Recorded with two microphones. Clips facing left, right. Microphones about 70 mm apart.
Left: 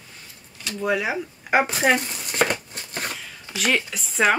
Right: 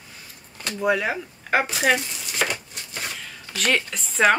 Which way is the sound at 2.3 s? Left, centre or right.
Left.